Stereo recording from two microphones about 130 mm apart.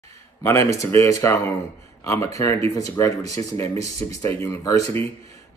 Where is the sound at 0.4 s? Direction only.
25° left (ahead or behind).